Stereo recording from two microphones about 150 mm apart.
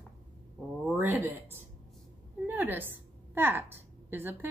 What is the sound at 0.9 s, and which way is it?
A woman's voice, 10° right (ahead or behind).